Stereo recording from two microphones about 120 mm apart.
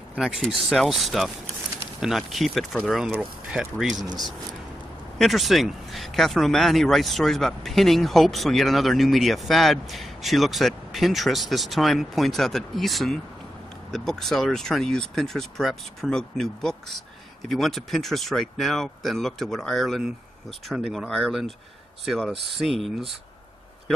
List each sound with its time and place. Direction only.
0.4 s speech: 5° left (ahead or behind)
4.0 s speech: 35° right (ahead or behind)
5.2 s speech: centre (ahead or behind)